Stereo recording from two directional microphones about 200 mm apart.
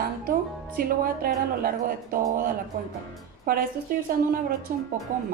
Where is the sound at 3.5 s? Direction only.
45° right (ahead or behind).